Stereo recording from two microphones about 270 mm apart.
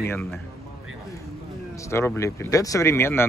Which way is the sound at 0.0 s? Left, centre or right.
Centre.